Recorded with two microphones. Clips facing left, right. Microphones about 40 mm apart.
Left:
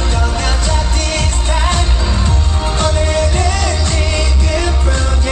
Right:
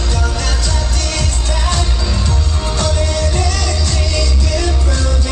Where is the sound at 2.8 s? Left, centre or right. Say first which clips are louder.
Left 4 dB; left.